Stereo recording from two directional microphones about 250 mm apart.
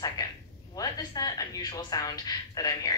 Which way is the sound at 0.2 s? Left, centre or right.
Centre.